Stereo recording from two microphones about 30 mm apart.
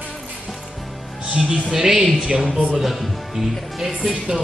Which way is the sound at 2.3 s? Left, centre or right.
Centre.